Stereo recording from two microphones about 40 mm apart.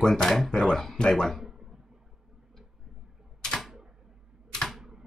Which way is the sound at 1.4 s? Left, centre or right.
Centre.